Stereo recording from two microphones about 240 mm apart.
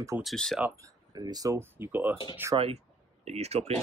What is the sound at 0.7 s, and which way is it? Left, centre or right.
Speech, centre.